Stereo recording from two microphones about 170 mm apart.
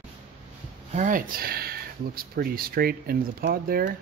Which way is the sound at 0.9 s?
50° right (ahead or behind).